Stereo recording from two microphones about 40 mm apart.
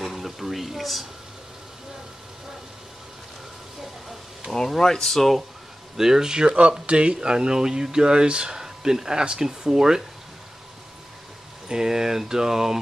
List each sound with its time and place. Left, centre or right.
0.0 s a sound: centre
4.6 s speech: centre
5.9 s speech: centre
11.7 s speech: centre